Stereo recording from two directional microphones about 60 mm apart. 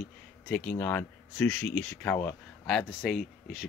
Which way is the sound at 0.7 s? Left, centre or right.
Left.